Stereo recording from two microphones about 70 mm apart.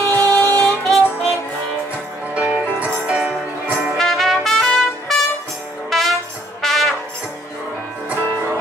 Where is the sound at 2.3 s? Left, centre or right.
Centre.